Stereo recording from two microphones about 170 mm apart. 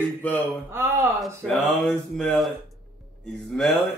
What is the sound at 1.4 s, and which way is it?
Speech, 5° left (ahead or behind).